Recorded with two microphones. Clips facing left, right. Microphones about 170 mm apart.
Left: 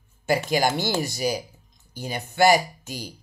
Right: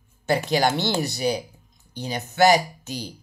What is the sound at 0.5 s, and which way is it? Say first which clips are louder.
Speech: right 3 dB; 10° left (ahead or behind).